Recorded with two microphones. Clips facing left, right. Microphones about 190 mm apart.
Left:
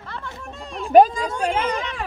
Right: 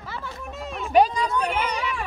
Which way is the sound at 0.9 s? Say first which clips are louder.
Left 5 dB; 50° left (ahead or behind).